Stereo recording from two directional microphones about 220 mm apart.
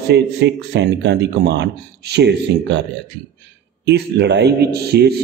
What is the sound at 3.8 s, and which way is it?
Speech, 50° right (ahead or behind).